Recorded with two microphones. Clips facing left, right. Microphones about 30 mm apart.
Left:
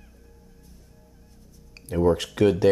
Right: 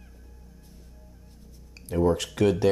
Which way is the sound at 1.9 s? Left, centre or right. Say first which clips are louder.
Left 2 dB; centre.